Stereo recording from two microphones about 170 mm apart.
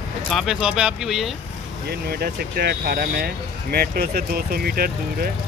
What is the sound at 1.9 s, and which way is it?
Speech, 65° right (ahead or behind).